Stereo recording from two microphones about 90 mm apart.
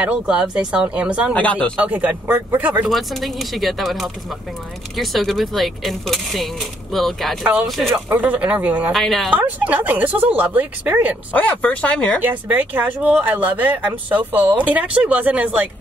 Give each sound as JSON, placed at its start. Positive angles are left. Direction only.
{"t": 0.0, "sound": "speech", "side_deg": -10}
{"t": 1.3, "sound": "speech", "side_deg": 15}
{"t": 1.8, "sound": "speech", "side_deg": -15}
{"t": 2.9, "sound": "speech", "side_deg": 0}
{"t": 8.1, "sound": "speech", "side_deg": -15}
{"t": 8.9, "sound": "speech", "side_deg": 0}
{"t": 9.3, "sound": "speech", "side_deg": -20}
{"t": 11.3, "sound": "speech", "side_deg": 15}
{"t": 12.2, "sound": "speech", "side_deg": -20}